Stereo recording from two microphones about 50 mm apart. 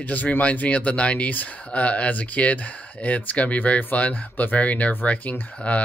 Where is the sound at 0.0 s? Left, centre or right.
Left.